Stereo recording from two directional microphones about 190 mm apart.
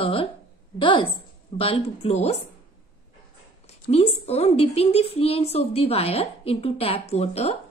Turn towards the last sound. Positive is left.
turn(degrees=35)  # may be behind; listen again after turning